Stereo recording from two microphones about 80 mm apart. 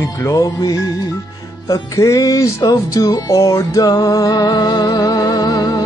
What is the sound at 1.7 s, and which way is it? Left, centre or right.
Music, left.